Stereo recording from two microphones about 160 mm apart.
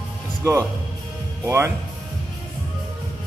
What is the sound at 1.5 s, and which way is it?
Speech, 15° right (ahead or behind).